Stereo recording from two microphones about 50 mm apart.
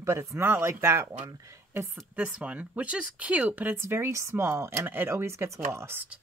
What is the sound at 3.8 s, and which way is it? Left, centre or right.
Speech, right.